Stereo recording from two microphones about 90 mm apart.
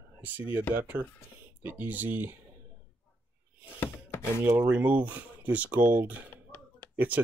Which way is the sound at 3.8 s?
25° left (ahead or behind).